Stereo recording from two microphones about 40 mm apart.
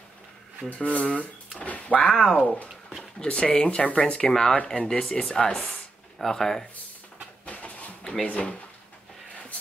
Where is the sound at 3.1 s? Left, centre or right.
Left.